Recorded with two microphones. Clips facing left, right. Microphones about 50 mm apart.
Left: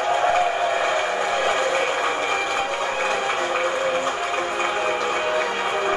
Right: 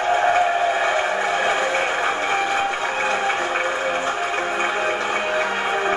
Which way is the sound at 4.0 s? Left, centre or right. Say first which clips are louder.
Right 1 dB; centre.